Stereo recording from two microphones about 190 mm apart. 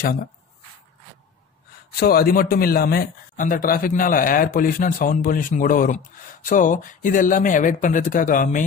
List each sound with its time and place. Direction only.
2.0 s a man's voice: 55° left (ahead or behind)